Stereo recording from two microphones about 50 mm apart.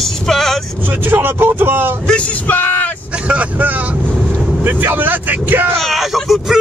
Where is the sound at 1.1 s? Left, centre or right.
Right.